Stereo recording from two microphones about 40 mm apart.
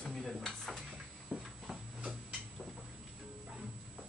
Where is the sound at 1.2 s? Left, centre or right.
Centre.